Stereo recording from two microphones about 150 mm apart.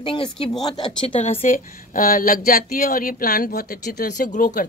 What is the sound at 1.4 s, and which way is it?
Speech, 60° left (ahead or behind).